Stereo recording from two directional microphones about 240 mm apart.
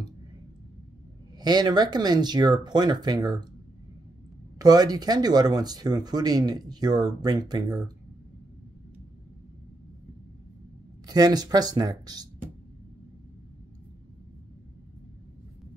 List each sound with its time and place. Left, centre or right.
1.4 s speech: centre
4.6 s speech: centre
11.1 s speech: centre